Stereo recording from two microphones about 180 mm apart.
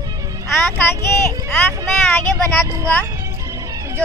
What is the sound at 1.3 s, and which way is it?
Speech, 20° right (ahead or behind).